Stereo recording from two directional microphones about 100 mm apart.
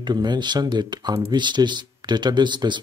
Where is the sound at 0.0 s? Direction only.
45° right (ahead or behind).